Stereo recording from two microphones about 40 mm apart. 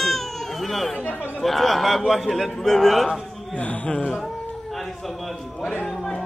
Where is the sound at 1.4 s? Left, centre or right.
Centre.